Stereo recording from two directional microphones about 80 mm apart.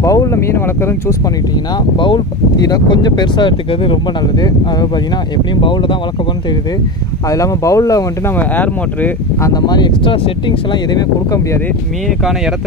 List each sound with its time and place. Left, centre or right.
0.0 s a sound: left
0.4 s speech: left
2.0 s speech: left
2.7 s speech: left
5.6 s speech: left
7.2 s speech: left
8.4 s speech: left
9.5 s speech: left